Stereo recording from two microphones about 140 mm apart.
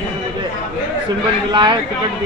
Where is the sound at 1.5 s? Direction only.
30° right (ahead or behind).